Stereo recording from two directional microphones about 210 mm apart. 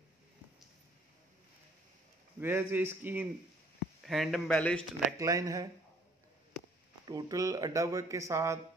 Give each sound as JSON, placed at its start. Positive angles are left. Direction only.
{"t": 2.4, "sound": "speech", "side_deg": -10}
{"t": 5.1, "sound": "speech", "side_deg": -15}
{"t": 7.1, "sound": "speech", "side_deg": -20}